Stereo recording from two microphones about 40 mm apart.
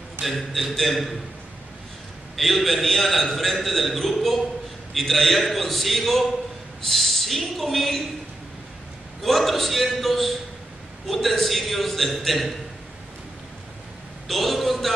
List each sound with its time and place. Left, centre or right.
0.2 s a man's voice: centre
2.3 s a man's voice: centre
9.2 s a man's voice: centre
14.2 s a man's voice: centre